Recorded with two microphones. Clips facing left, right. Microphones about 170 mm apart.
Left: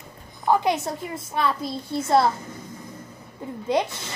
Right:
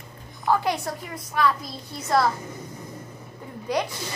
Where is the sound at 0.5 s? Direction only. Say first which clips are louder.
Left 2 dB; 20° left (ahead or behind).